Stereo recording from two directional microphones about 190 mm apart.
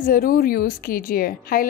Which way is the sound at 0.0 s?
50° left (ahead or behind).